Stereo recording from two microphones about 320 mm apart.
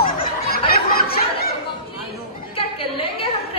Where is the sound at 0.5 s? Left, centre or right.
Left.